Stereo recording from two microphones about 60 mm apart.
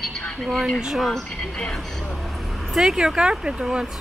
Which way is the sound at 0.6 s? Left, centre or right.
Centre.